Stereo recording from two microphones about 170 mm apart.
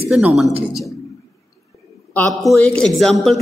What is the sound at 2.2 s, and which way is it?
A man's voice, 5° left (ahead or behind).